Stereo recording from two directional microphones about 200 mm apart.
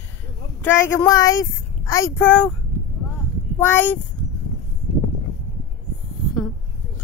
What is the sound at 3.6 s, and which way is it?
Speech, 10° left (ahead or behind).